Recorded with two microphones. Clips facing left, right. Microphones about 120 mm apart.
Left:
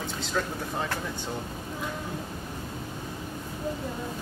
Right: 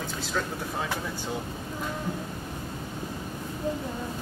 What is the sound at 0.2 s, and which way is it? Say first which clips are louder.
Speech: left 1 dB; centre (ahead or behind).